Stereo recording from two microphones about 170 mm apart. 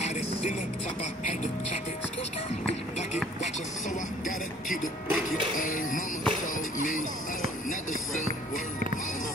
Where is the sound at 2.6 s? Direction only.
40° left (ahead or behind).